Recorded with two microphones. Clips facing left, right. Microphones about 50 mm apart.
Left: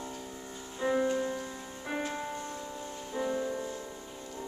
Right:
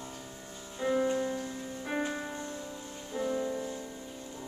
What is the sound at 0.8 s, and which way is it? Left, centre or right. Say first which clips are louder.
Music: even; centre.